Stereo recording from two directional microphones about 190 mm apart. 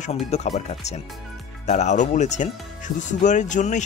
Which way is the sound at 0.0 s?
35° left (ahead or behind).